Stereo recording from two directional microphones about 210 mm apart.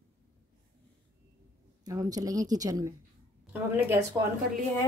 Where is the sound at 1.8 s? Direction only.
15° right (ahead or behind).